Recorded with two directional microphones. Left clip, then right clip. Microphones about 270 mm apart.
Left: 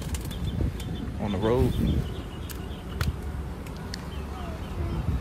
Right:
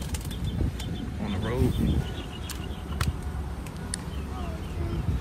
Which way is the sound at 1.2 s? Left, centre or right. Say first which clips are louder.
Left 7 dB; centre.